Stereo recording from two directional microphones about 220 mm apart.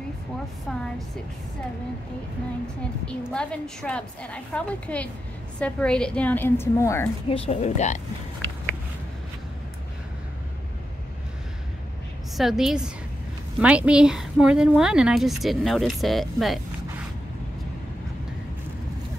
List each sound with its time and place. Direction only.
3.1 s a woman's voice: 5° left (ahead or behind)
7.2 s speech: 25° left (ahead or behind)
12.4 s a woman's voice: centre (ahead or behind)